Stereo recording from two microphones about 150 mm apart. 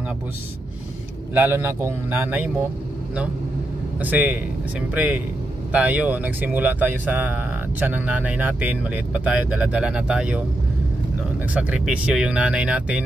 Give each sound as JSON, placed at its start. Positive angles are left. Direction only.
{"t": 1.3, "sound": "speech", "side_deg": -15}
{"t": 4.0, "sound": "speech", "side_deg": -10}
{"t": 11.5, "sound": "speech", "side_deg": -10}